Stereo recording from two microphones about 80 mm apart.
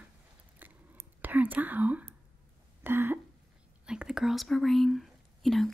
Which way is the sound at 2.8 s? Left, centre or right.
Right.